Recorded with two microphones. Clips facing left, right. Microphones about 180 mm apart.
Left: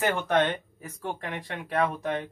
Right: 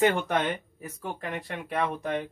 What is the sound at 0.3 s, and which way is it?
Speech, 10° right (ahead or behind).